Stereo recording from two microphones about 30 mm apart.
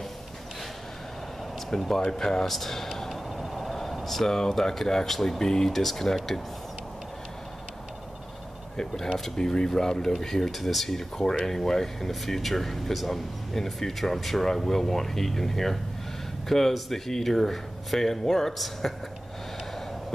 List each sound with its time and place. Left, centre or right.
1.7 s speech: left
2.0 s speech: centre
2.4 s speech: centre
3.1 s a sound: centre
4.0 s speech: centre
8.7 s speech: centre
10.5 s speech: centre
11.4 s speech: centre